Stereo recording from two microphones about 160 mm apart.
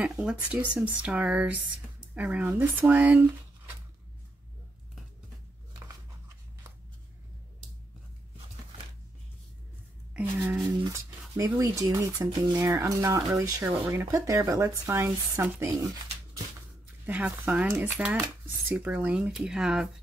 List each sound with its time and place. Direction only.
0.0 s speech: 5° right (ahead or behind)
10.1 s a woman's voice: 15° right (ahead or behind)
17.0 s speech: 10° right (ahead or behind)